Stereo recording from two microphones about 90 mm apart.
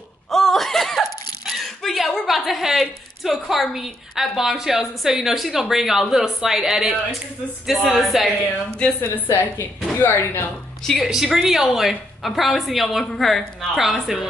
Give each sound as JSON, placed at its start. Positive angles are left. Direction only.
{"t": 0.3, "sound": "a sound", "side_deg": 5}
{"t": 3.4, "sound": "speech", "side_deg": -5}
{"t": 8.7, "sound": "a woman's voice", "side_deg": 15}
{"t": 10.9, "sound": "speech", "side_deg": 0}